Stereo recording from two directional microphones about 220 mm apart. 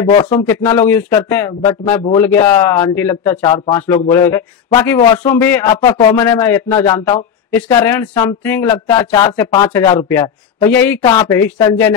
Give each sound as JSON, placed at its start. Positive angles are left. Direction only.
{"t": 0.0, "sound": "a man's voice", "side_deg": 20}